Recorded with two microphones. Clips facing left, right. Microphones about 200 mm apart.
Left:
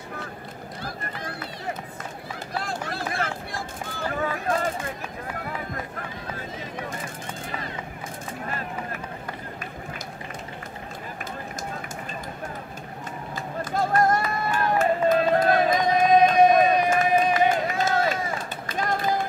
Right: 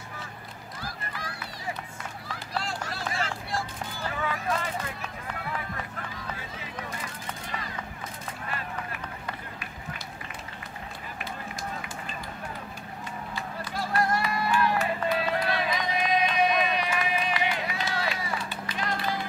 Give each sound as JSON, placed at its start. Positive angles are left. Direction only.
{"t": 2.6, "sound": "run", "side_deg": 55}
{"t": 4.1, "sound": "a sound", "side_deg": 45}
{"t": 13.3, "sound": "run", "side_deg": 45}